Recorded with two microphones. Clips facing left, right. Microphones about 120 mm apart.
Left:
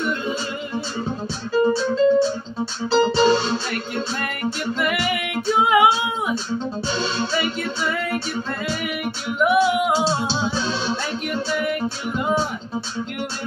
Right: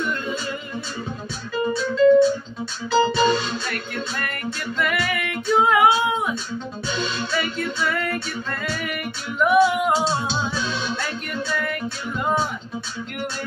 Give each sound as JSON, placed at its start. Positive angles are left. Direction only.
{"t": 1.5, "sound": "music", "side_deg": 30}
{"t": 4.7, "sound": "female singing", "side_deg": 15}
{"t": 6.9, "sound": "music", "side_deg": 30}
{"t": 8.6, "sound": "female singing", "side_deg": 5}
{"t": 9.9, "sound": "music", "side_deg": 30}
{"t": 11.5, "sound": "music", "side_deg": 15}